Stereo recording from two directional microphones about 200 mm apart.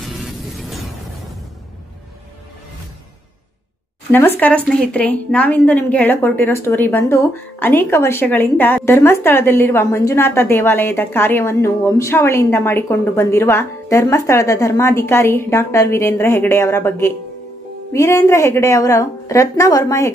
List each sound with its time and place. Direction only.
4.1 s a woman's voice: 10° left (ahead or behind)